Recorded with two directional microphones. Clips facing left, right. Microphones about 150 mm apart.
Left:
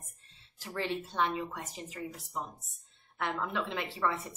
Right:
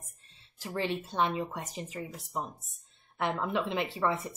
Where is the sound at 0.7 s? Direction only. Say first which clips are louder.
Right 2 dB; 20° right (ahead or behind).